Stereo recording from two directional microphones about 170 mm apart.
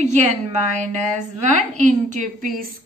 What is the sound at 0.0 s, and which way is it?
A woman's voice, 45° right (ahead or behind).